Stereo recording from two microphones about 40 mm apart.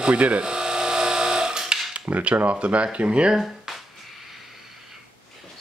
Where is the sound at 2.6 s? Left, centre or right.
Right.